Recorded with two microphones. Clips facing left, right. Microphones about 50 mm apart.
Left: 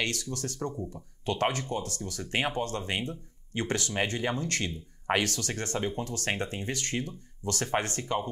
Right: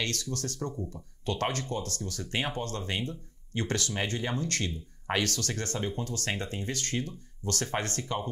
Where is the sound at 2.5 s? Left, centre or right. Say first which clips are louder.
Left 2 dB; left.